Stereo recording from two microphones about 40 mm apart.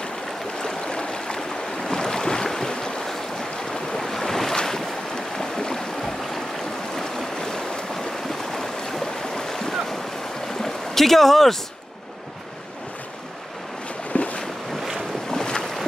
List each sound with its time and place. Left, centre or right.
0.6 s stream: left
1.9 s boat: centre
3.7 s waves: centre
4.6 s boat: centre
7.0 s stream: centre
10.6 s a sound: centre
14.1 s boat: left
15.0 s boat: centre